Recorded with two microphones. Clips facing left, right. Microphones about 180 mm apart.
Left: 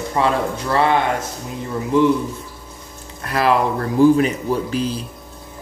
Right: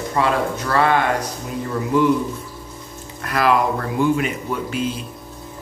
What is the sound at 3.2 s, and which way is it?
Speech, 30° left (ahead or behind).